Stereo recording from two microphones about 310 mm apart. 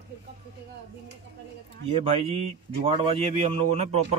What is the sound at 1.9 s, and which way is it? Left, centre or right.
Speech, centre.